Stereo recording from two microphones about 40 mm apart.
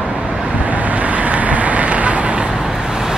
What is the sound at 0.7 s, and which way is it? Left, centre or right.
Vehicle, right.